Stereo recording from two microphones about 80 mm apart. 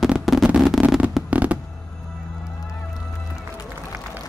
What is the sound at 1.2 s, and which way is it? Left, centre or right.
Fireworks, centre.